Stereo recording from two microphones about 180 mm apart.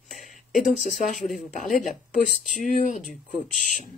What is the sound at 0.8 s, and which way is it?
Speech, 45° left (ahead or behind).